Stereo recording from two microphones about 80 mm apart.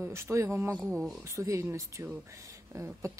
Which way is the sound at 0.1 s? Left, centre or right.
Right.